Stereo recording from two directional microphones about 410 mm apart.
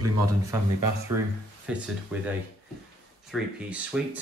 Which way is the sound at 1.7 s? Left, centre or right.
Centre.